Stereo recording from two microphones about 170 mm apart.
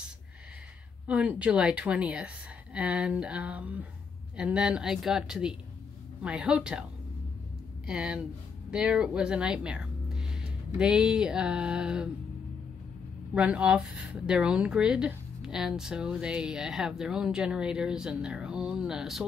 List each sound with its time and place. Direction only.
1.0 s a woman's voice: 10° right (ahead or behind)
7.8 s speech: 5° right (ahead or behind)
13.3 s speech: 10° right (ahead or behind)